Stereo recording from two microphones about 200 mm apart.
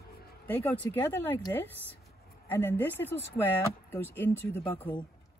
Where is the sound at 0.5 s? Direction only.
10° left (ahead or behind).